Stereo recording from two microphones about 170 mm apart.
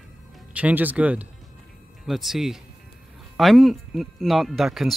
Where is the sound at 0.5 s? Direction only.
10° right (ahead or behind).